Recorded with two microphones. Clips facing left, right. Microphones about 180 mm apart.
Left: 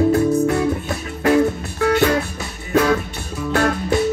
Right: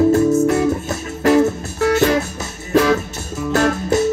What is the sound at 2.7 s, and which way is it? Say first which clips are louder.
Music: right 2 dB; 40° right (ahead or behind).